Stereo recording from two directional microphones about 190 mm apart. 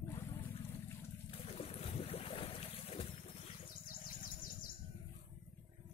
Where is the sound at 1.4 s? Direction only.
30° left (ahead or behind).